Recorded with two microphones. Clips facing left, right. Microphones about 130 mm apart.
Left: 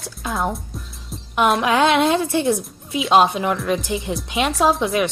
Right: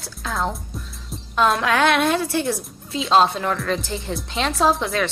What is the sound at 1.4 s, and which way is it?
A child's voice, 20° left (ahead or behind).